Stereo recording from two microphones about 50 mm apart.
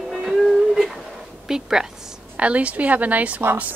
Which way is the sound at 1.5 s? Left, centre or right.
Centre.